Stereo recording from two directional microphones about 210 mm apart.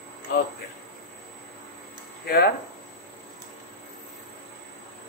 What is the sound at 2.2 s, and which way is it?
Speech, 50° left (ahead or behind).